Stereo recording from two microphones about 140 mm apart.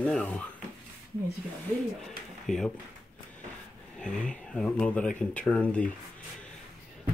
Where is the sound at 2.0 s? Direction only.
5° left (ahead or behind).